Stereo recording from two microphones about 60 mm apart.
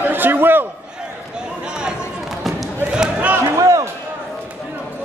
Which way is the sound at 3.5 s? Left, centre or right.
Right.